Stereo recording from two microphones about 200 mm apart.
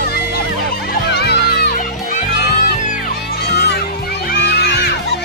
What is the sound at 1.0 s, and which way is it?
Music, 55° left (ahead or behind).